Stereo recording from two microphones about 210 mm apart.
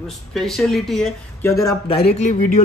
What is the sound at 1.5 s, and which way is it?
Speech, 15° left (ahead or behind).